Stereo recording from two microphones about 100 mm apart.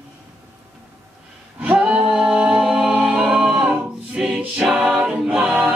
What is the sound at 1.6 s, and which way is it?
Music, 10° right (ahead or behind).